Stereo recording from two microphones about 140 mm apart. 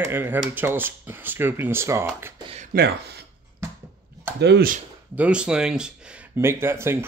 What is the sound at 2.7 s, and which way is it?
Speech, 90° right.